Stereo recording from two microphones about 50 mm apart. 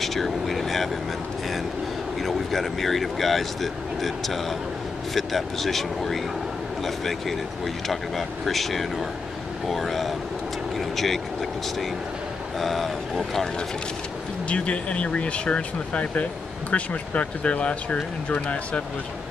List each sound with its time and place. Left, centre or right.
0.0 s vehicle: centre
2.2 s speech: centre
10.8 s vehicle: centre
12.5 s speech: centre
14.5 s speech: left